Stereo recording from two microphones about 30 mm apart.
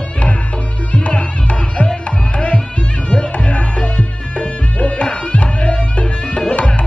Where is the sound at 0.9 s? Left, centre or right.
Left.